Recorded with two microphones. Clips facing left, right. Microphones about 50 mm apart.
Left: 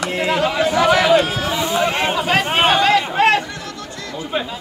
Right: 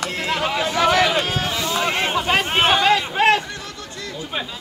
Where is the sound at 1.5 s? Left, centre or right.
Centre.